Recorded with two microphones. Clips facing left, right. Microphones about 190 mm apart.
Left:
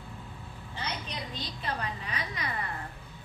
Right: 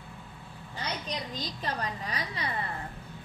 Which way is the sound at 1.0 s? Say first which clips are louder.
Right 3 dB; 40° right (ahead or behind).